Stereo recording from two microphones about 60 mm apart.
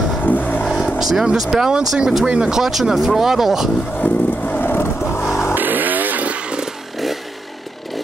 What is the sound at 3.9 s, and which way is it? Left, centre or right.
Vehicle, left.